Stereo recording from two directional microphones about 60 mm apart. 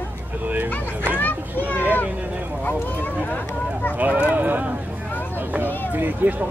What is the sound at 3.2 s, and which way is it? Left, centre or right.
Speech, left.